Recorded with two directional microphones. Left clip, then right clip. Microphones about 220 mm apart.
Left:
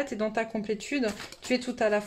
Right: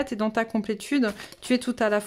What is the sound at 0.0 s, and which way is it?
Speech, 35° right (ahead or behind).